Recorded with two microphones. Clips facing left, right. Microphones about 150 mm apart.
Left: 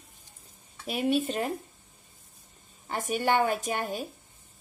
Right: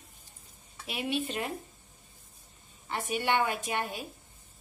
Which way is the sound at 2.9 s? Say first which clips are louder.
Left 3 dB; 40° left (ahead or behind).